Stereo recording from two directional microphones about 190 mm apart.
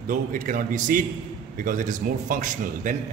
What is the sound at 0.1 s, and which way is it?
A man's voice, 45° right (ahead or behind).